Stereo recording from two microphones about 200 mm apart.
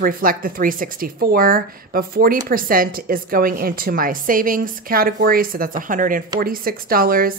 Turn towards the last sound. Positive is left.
turn(degrees=-45)  # may be behind; listen again after turning